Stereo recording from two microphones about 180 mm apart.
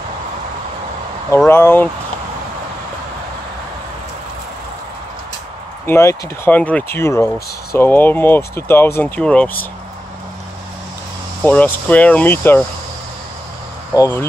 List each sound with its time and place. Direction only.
1.5 s speech: 10° left (ahead or behind)
5.9 s speech: 15° left (ahead or behind)
11.4 s speech: 10° left (ahead or behind)
13.9 s speech: 15° left (ahead or behind)